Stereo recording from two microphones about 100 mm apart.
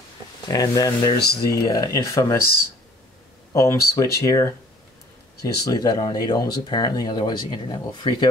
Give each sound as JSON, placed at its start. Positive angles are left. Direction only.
{"t": 0.5, "sound": "speech", "side_deg": 35}
{"t": 3.5, "sound": "speech", "side_deg": 30}